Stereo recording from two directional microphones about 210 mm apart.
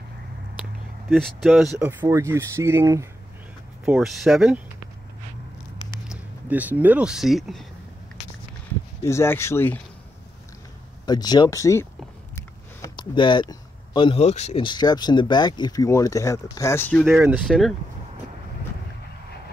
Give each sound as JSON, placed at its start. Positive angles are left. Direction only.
{"t": 1.1, "sound": "speech", "side_deg": 0}
{"t": 1.8, "sound": "speech", "side_deg": -15}
{"t": 6.0, "sound": "speech", "side_deg": -10}
{"t": 9.0, "sound": "speech", "side_deg": 10}
{"t": 11.1, "sound": "speech", "side_deg": 20}